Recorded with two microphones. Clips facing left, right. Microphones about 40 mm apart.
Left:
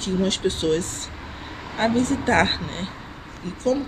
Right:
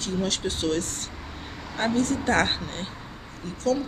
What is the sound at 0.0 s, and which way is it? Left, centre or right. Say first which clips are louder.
A woman's voice: left 5 dB; centre.